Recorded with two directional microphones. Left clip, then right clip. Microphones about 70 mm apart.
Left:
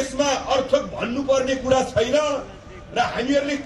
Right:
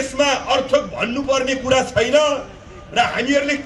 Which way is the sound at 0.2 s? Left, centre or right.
Right.